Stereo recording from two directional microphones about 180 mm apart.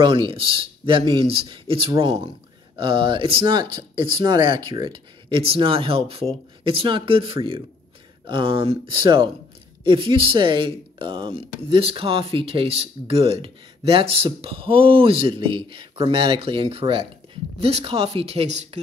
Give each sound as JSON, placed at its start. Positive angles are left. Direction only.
{"t": 0.0, "sound": "speech", "side_deg": -30}